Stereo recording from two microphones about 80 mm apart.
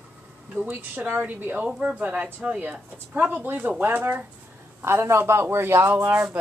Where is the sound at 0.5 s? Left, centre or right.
Centre.